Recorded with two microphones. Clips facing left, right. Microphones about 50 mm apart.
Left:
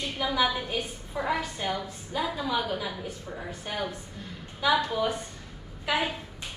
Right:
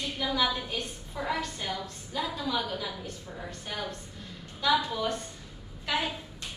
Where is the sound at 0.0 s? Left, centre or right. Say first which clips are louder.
Left 2 dB; centre.